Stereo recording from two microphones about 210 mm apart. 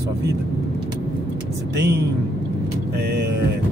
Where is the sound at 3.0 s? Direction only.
55° right (ahead or behind).